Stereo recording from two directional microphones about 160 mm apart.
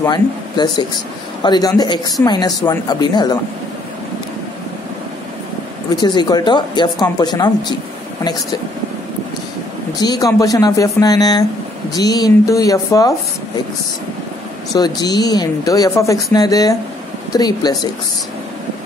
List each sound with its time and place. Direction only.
0.0 s speech: 25° left (ahead or behind)
5.9 s speech: 25° left (ahead or behind)
9.9 s speech: 25° left (ahead or behind)
14.7 s speech: 25° left (ahead or behind)